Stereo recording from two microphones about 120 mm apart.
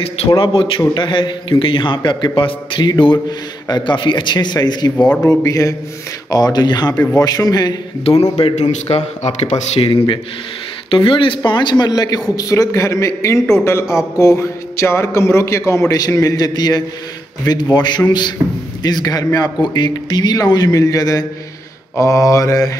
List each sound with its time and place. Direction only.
0.3 s a man's voice: 45° left (ahead or behind)
4.9 s speech: 10° left (ahead or behind)
5.2 s a man's voice: 30° left (ahead or behind)
8.0 s speech: 60° left (ahead or behind)
9.8 s a man's voice: 45° left (ahead or behind); by 22.7 s 25° left (ahead or behind)